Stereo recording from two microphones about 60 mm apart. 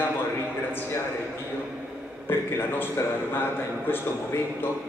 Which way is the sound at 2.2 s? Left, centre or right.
Left.